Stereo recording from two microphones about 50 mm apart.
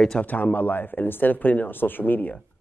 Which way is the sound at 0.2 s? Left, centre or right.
Left.